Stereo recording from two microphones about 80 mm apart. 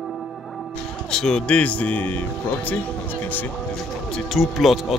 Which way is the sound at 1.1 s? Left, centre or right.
Centre.